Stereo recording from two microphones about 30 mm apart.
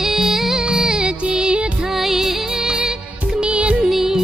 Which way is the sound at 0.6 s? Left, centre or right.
Right.